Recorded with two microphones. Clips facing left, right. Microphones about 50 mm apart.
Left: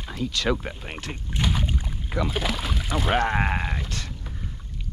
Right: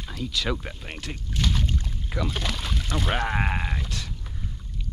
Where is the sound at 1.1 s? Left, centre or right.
Centre.